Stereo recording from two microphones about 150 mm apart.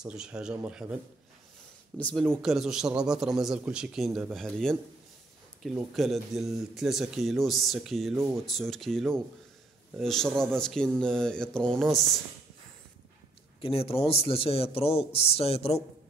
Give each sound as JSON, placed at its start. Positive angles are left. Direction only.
{"t": 0.0, "sound": "a man's voice", "side_deg": -5}
{"t": 2.0, "sound": "speech", "side_deg": 5}
{"t": 13.6, "sound": "a man's voice", "side_deg": 40}